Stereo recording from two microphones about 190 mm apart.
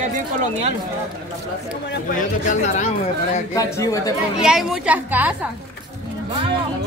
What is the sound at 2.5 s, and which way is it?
Speech, 40° left (ahead or behind).